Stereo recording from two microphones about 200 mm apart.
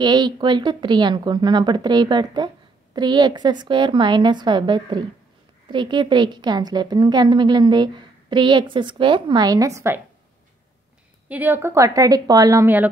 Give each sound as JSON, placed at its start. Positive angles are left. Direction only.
{"t": 0.0, "sound": "a woman's voice", "side_deg": -20}
{"t": 11.2, "sound": "a woman's voice", "side_deg": -10}